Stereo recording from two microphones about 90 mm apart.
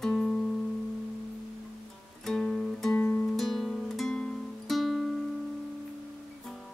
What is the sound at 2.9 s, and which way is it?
Music, 15° left (ahead or behind).